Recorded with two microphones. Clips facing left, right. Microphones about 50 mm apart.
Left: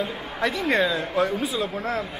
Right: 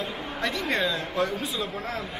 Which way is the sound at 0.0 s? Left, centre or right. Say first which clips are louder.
Left 4 dB; centre.